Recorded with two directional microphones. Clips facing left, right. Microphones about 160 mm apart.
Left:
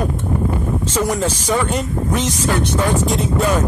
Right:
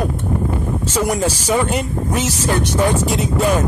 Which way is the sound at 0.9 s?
10° right (ahead or behind).